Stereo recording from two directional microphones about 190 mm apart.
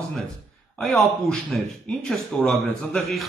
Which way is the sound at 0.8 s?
Centre (ahead or behind).